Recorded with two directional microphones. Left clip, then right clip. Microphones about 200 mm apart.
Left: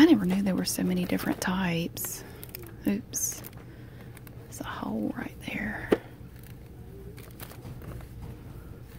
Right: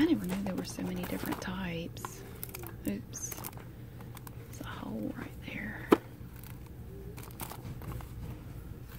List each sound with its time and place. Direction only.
0.0 s speech: 40° left (ahead or behind)
4.6 s speech: 35° left (ahead or behind)